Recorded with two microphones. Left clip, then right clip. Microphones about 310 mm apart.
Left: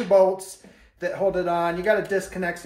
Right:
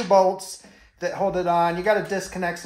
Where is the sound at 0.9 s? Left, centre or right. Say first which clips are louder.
Even; centre.